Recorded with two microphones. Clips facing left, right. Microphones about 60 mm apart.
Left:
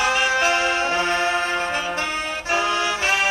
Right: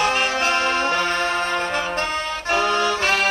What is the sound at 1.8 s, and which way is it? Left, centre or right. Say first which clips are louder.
Music: right 1 dB; right.